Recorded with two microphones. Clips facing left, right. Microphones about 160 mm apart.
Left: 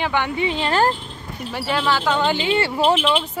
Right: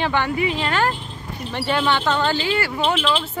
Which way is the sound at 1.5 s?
5° left (ahead or behind).